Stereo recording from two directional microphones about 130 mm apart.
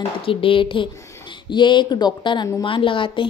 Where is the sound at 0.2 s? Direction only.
45° left (ahead or behind).